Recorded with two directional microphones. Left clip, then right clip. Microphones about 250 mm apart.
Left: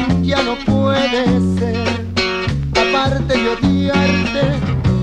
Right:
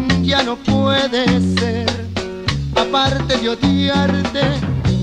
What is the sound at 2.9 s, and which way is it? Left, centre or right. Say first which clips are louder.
Music: even; left.